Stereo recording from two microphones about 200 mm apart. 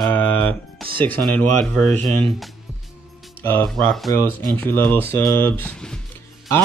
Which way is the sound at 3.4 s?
10° left (ahead or behind).